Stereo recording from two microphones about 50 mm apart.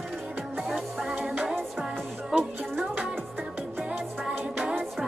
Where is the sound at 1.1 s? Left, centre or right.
Right.